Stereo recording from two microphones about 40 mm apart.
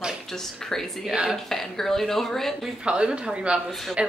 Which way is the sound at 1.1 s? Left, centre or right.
Centre.